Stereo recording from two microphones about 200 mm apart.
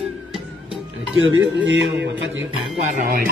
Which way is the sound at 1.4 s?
70° right (ahead or behind).